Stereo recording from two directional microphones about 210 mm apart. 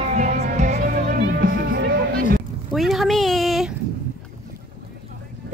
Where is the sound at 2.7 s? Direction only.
Centre (ahead or behind).